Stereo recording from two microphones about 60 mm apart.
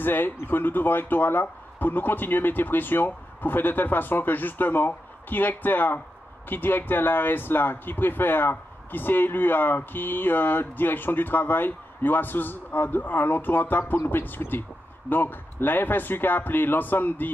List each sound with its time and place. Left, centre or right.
0.0 s speech: left